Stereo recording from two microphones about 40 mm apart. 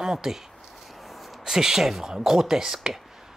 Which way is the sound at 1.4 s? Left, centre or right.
Centre.